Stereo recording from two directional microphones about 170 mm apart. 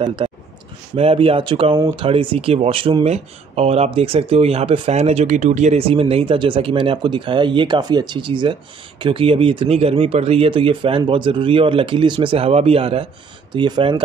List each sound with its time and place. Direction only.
0.0 s speech: 30° right (ahead or behind)